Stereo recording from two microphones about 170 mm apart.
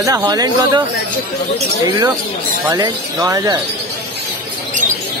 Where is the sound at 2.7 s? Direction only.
20° right (ahead or behind).